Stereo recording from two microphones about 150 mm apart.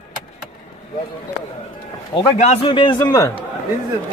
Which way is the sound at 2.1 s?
45° left (ahead or behind).